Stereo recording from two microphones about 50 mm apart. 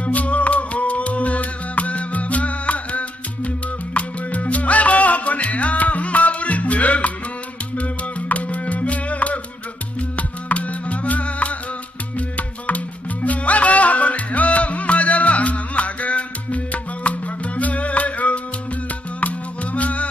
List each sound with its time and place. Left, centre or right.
0.0 s music: left